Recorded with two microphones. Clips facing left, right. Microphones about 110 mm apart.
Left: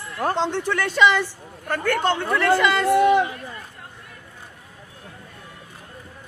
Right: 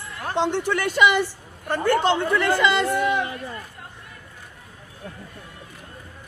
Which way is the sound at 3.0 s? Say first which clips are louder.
Left 6 dB; 35° left (ahead or behind).